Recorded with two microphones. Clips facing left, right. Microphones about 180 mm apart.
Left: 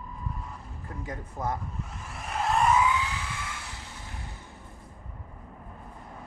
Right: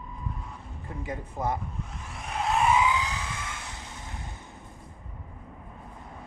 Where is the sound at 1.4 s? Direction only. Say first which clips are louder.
Right 2 dB; 10° right (ahead or behind).